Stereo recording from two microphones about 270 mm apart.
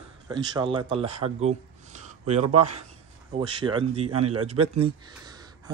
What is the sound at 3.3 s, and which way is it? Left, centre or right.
A man's voice, centre.